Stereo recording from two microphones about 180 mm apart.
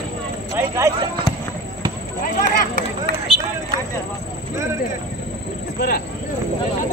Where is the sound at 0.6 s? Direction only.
15° right (ahead or behind).